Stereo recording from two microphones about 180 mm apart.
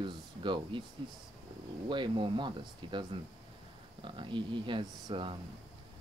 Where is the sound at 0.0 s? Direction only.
25° right (ahead or behind).